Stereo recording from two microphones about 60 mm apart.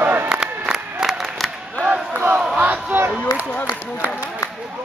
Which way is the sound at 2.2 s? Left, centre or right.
Right.